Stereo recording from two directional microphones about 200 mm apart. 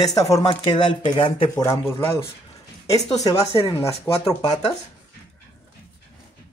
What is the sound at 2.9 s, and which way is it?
Speech, 20° left (ahead or behind).